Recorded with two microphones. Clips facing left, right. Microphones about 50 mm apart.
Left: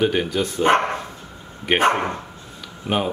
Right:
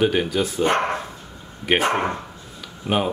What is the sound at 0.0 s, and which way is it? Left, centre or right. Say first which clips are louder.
Speech: even; centre.